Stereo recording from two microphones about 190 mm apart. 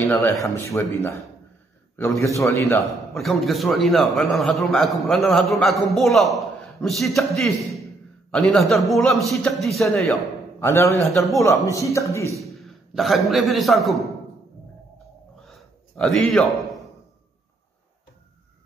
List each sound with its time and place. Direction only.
0.0 s a man's voice: 10° left (ahead or behind)
2.2 s a man's voice: 15° left (ahead or behind)
3.2 s a man's voice: centre (ahead or behind)
10.6 s a man's voice: 15° left (ahead or behind)
12.4 s a man's voice: centre (ahead or behind)
15.4 s a sound: centre (ahead or behind)